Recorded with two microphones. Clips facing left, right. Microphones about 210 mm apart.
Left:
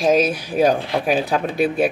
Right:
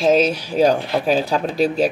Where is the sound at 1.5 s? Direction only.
55° left (ahead or behind).